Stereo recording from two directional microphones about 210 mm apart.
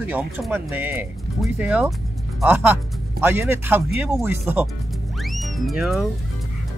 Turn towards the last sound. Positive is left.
turn(degrees=0)  # may be behind; listen again after turning